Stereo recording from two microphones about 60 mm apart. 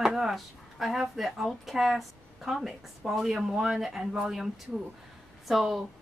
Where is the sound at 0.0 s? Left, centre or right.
Centre.